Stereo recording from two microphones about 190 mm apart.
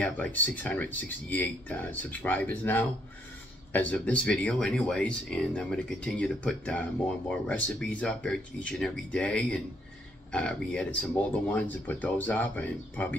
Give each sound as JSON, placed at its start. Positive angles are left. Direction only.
{"t": 0.0, "sound": "speech", "side_deg": 10}